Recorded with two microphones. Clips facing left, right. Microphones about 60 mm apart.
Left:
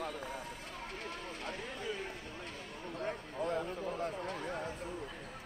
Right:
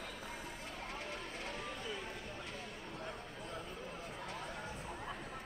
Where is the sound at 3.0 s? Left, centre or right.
Left.